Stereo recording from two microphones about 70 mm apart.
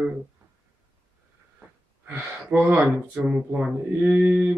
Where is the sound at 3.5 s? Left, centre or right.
Centre.